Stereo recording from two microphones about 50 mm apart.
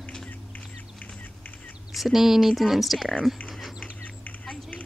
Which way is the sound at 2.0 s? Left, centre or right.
Centre.